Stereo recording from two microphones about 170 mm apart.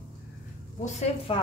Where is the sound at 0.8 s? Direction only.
40° left (ahead or behind).